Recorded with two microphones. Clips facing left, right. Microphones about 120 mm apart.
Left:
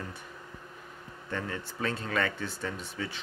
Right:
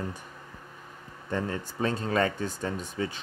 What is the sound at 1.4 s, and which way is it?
Speech, 35° right (ahead or behind).